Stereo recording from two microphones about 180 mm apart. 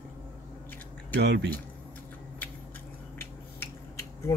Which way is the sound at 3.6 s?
15° left (ahead or behind).